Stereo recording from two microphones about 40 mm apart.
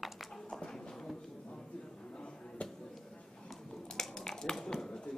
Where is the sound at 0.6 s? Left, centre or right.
Centre.